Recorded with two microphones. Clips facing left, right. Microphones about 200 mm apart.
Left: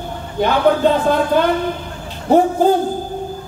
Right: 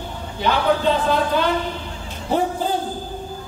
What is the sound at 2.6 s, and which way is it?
Speech, 50° left (ahead or behind).